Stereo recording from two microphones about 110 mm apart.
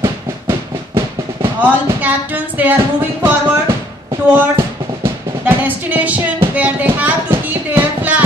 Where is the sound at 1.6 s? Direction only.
15° right (ahead or behind).